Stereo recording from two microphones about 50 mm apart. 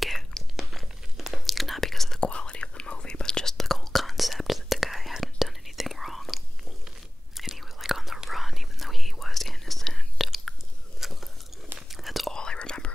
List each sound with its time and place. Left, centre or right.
0.6 s whispering: centre
2.1 s whispering: centre
11.0 s biting: centre
11.9 s whispering: centre
12.3 s whispering: centre